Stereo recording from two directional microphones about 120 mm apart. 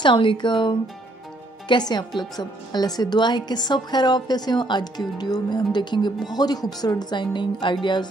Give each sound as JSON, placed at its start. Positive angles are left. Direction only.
{"t": 0.0, "sound": "a woman's voice", "side_deg": 45}